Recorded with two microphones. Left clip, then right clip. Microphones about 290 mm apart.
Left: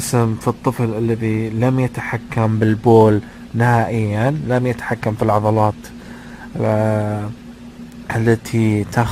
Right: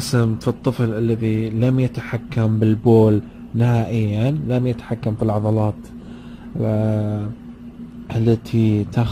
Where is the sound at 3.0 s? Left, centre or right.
Left.